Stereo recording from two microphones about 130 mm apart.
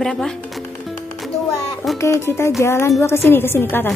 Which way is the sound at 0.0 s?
5° left (ahead or behind).